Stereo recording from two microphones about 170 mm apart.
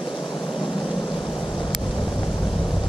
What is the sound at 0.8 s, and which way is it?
Vehicle, centre (ahead or behind).